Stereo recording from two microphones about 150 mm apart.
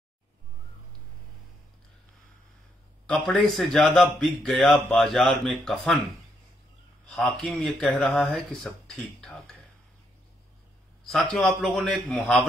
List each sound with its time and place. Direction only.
3.1 s a man's voice: 5° left (ahead or behind)
7.1 s a man's voice: centre (ahead or behind)
11.1 s a man's voice: centre (ahead or behind)